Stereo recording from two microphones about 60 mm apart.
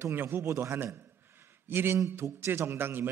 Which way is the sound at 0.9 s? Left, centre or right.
Right.